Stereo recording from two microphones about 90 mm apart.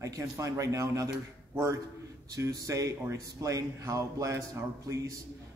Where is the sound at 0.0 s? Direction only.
35° right (ahead or behind).